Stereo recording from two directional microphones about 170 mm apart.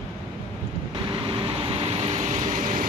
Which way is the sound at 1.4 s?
30° right (ahead or behind).